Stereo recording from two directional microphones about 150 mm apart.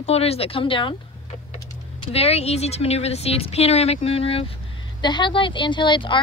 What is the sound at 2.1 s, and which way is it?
A woman's voice, 45° left (ahead or behind).